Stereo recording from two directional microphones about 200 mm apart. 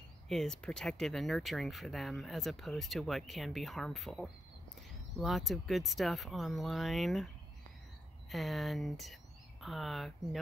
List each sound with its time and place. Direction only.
0.3 s speech: centre (ahead or behind)
8.3 s speech: centre (ahead or behind)